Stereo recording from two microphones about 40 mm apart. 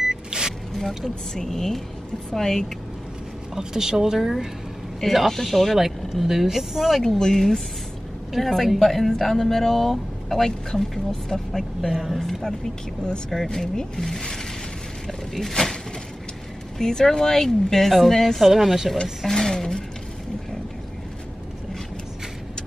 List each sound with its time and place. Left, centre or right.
0.1 s vehicle: centre
0.7 s speech: centre
3.5 s speech: centre
5.0 s a man's voice: centre
7.0 s a man's voice: centre
11.9 s a man's voice: centre
15.0 s a sound: centre
16.7 s speech: centre
19.2 s a sound: centre